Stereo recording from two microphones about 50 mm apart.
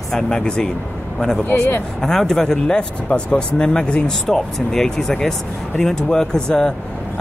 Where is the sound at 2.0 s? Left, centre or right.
Centre.